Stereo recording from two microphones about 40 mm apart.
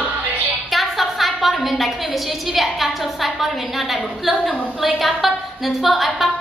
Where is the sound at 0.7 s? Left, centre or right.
Centre.